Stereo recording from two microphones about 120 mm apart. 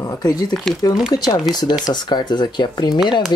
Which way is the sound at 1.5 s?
35° left (ahead or behind).